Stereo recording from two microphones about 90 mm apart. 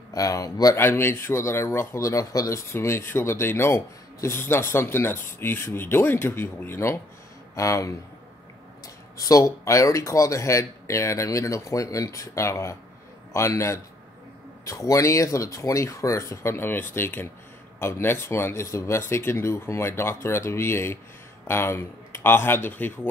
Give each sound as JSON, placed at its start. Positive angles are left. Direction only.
{"t": 0.1, "sound": "speech", "side_deg": 40}
{"t": 0.7, "sound": "speech", "side_deg": 25}